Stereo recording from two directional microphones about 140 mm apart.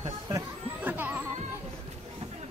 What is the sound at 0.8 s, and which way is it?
Music, 10° right (ahead or behind).